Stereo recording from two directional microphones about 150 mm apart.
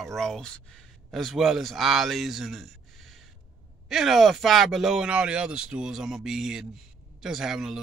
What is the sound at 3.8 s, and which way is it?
Speech, centre (ahead or behind).